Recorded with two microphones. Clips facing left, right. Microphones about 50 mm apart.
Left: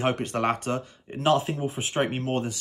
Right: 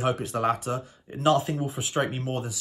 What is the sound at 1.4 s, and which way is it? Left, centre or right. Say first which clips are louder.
Speech: even; left.